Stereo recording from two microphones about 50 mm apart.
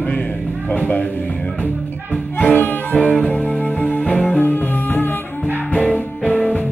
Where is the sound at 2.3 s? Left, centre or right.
Left.